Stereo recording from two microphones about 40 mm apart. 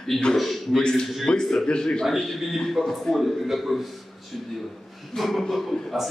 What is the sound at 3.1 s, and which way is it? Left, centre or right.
Speech, centre.